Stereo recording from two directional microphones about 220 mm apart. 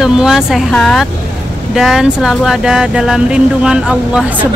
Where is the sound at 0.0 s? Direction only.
Centre (ahead or behind).